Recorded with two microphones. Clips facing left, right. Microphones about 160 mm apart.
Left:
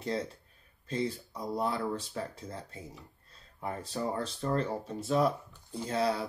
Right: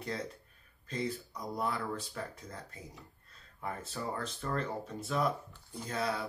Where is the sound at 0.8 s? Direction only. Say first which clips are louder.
Left 3 dB; 30° left (ahead or behind).